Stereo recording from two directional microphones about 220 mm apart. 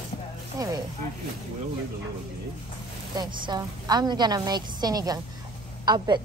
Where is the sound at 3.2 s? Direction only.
20° right (ahead or behind).